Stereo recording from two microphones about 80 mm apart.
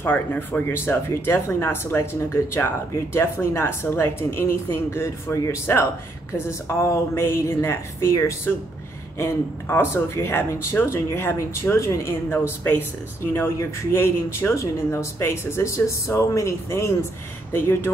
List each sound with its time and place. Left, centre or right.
0.0 s speech: left